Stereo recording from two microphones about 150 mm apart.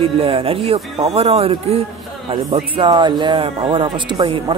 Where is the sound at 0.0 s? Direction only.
40° right (ahead or behind).